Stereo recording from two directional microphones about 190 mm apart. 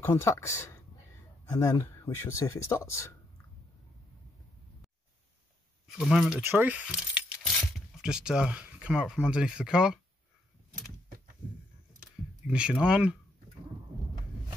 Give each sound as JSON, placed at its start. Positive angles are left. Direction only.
{"t": 0.0, "sound": "speech", "side_deg": 15}
{"t": 5.9, "sound": "speech", "side_deg": 0}
{"t": 12.4, "sound": "speech", "side_deg": -5}